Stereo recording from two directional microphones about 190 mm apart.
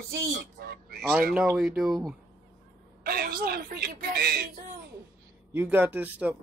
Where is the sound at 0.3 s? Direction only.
50° right (ahead or behind).